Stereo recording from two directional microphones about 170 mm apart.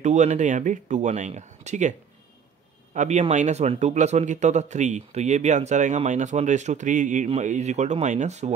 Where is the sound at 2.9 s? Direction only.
45° right (ahead or behind).